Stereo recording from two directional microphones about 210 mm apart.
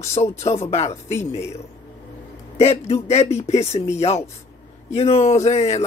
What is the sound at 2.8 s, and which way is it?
Speech, 30° left (ahead or behind).